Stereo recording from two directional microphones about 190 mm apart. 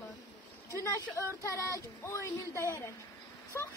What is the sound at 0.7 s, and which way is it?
Speech, 15° left (ahead or behind).